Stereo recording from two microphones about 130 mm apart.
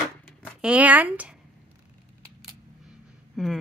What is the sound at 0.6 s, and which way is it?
Speech, 10° right (ahead or behind).